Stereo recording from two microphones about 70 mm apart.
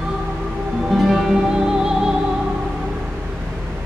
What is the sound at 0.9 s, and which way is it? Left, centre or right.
Music, centre.